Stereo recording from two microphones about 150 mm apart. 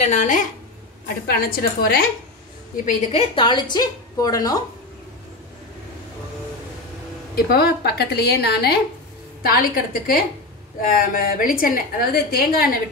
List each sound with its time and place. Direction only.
0.0 s a woman's voice: 55° left (ahead or behind)
1.0 s a woman's voice: 85° left
2.7 s a woman's voice: 60° left (ahead or behind)
3.1 s a woman's voice: 35° left (ahead or behind)
7.3 s a woman's voice: 90° left
9.4 s a woman's voice: 75° left (ahead or behind)